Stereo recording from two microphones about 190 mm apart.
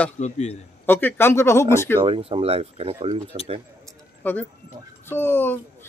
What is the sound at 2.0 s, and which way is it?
Speech, 30° right (ahead or behind).